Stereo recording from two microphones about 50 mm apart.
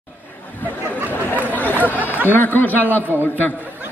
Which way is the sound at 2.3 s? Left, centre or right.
Left.